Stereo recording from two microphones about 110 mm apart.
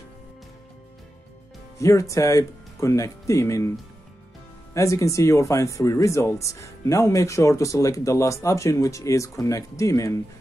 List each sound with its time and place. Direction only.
1.8 s speech: 30° left (ahead or behind)
4.7 s speech: 30° left (ahead or behind)